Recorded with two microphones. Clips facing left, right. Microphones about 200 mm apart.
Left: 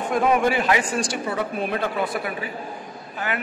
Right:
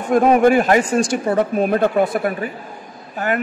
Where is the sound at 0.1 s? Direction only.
45° right (ahead or behind).